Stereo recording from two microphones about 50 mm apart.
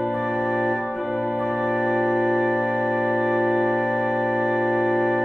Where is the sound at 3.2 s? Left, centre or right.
Centre.